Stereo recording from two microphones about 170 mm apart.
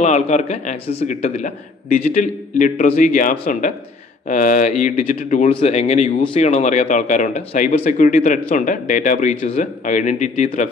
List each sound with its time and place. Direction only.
0.0 s a man's voice: 40° left (ahead or behind)
1.9 s a man's voice: 55° left (ahead or behind)